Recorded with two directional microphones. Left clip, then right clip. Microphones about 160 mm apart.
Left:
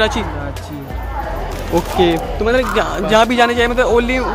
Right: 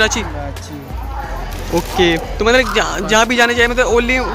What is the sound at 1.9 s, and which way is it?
Speech, 5° right (ahead or behind).